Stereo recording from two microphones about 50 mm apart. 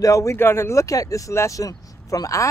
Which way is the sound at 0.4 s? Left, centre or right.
Left.